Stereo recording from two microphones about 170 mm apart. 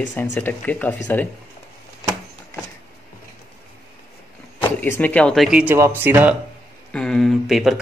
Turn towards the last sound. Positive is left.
turn(degrees=0)  # may be behind; listen again after turning